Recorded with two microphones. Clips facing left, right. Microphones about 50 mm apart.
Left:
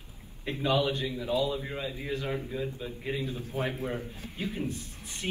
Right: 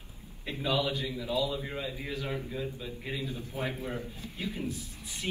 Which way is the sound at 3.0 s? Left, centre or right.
Left.